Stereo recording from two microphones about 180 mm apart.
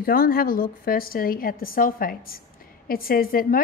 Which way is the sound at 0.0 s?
55° left (ahead or behind).